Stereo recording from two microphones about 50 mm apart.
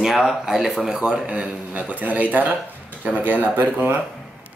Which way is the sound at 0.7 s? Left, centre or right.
Centre.